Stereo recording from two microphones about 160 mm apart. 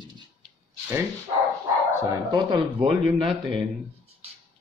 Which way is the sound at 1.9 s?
15° right (ahead or behind).